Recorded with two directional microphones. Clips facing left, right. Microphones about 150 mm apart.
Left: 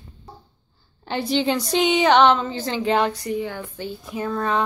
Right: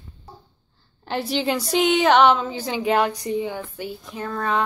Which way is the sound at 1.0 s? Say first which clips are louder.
Left 2 dB; 5° right (ahead or behind).